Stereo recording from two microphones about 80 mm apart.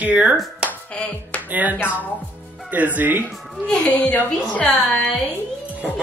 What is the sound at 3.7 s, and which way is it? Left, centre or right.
A woman's voice, centre.